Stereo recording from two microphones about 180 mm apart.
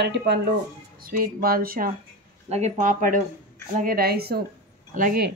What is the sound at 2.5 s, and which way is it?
A woman's voice, 40° right (ahead or behind).